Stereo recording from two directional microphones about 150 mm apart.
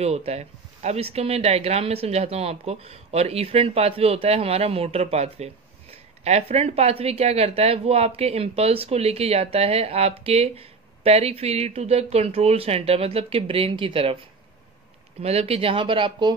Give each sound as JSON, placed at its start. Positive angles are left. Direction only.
{"t": 0.0, "sound": "speech", "side_deg": -45}
{"t": 15.2, "sound": "speech", "side_deg": -45}